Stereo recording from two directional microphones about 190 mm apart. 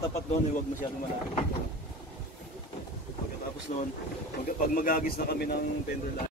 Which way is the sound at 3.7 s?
40° left (ahead or behind).